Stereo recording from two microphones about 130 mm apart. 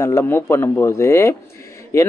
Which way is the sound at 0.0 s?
20° left (ahead or behind).